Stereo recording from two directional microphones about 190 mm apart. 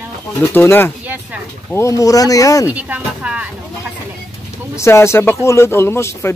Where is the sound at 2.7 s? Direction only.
10° right (ahead or behind).